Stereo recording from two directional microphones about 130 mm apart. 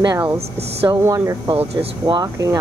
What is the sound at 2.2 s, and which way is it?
Speech, 25° right (ahead or behind).